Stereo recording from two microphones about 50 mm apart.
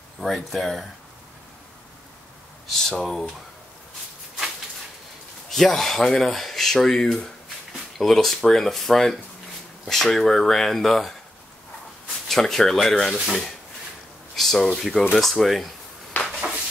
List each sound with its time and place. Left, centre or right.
0.2 s speech: centre
2.7 s speech: centre
5.5 s speech: centre
12.3 s speech: centre
14.3 s speech: centre
16.1 s a sound: left